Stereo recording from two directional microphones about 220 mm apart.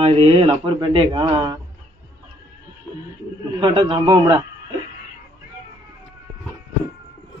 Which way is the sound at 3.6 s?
20° right (ahead or behind).